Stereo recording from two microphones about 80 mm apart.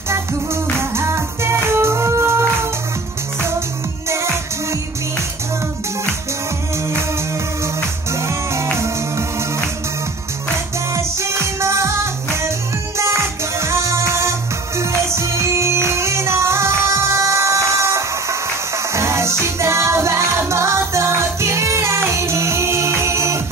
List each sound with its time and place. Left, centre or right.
0.1 s music: right
4.1 s music: right
7.6 s music: right
11.0 s music: right